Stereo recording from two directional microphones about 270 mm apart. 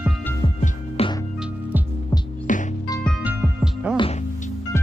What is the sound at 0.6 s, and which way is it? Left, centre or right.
Music, left.